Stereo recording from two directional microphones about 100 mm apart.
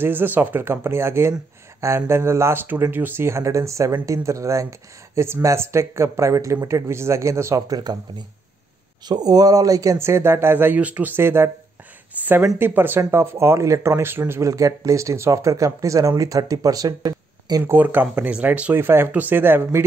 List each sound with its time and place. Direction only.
0.0 s speech: 20° right (ahead or behind); by 8.0 s 40° right (ahead or behind)
9.0 s speech: 45° right (ahead or behind)
17.6 s speech: 20° right (ahead or behind)